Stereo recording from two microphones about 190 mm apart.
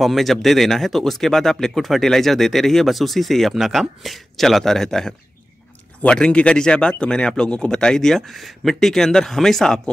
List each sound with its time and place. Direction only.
0.0 s speech: centre (ahead or behind)